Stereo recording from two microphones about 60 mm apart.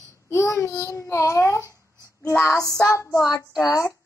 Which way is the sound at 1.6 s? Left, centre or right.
Right.